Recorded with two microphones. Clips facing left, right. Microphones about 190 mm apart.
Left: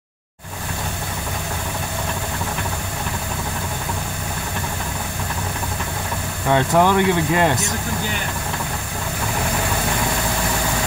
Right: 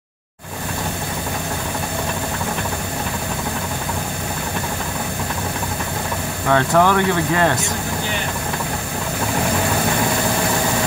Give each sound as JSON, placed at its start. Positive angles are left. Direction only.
{"t": 6.5, "sound": "speech", "side_deg": 15}